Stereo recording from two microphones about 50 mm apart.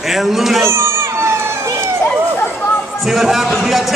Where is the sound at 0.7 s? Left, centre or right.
Right.